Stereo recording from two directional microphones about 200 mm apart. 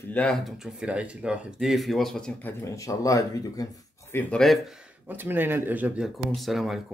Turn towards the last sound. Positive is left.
turn(degrees=0)  # may be behind; listen again after turning